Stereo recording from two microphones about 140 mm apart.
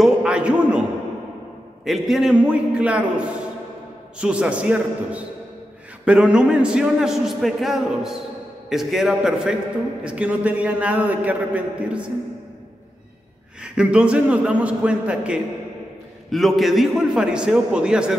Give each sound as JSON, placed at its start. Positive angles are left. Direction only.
{"t": 0.0, "sound": "a sound", "side_deg": -5}
{"t": 1.9, "sound": "a man's voice", "side_deg": 0}
{"t": 13.6, "sound": "a man's voice", "side_deg": -5}